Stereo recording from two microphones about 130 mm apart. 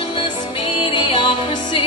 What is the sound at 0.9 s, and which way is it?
Music, 40° left (ahead or behind).